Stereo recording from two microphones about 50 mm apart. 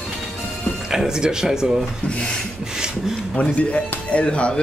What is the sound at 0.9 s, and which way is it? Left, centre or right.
Speech, centre.